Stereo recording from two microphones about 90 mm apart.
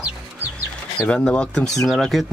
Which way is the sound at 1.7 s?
Centre (ahead or behind).